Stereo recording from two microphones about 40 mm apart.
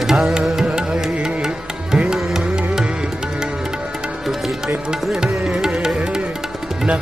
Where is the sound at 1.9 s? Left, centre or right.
Centre.